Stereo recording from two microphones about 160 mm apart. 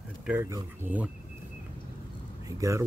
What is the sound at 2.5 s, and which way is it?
Speech, 20° right (ahead or behind).